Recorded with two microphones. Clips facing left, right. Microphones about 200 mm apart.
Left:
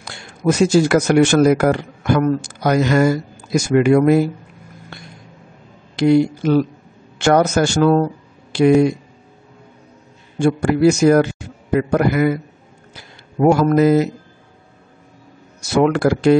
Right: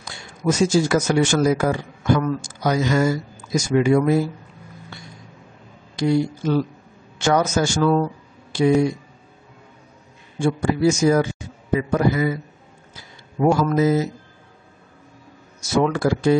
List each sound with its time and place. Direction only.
0.0 s speech: 65° left (ahead or behind)
5.9 s speech: 70° left (ahead or behind)
10.4 s a man's voice: 70° left (ahead or behind)
15.7 s speech: 70° left (ahead or behind)